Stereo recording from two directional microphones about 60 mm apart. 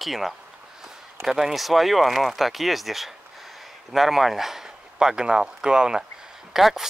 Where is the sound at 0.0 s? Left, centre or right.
Centre.